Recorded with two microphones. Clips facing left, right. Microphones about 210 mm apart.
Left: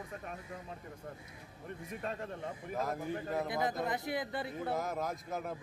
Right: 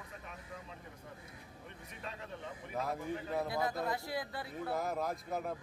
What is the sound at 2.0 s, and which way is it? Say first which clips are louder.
Speech: left 6 dB; 50° left (ahead or behind).